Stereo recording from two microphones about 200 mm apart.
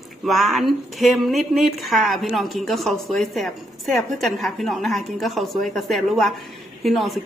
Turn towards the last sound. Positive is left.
turn(degrees=0)  # may be behind; listen again after turning